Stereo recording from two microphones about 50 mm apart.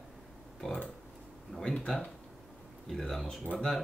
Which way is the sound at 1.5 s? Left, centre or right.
Centre.